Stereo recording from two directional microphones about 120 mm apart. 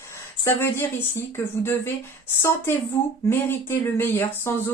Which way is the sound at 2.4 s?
20° left (ahead or behind).